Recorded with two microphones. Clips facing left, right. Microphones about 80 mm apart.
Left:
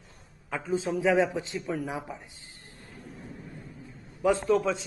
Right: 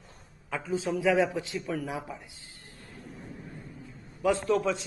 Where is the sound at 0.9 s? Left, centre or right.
Left.